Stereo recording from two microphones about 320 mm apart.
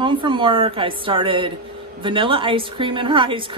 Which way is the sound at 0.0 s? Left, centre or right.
Centre.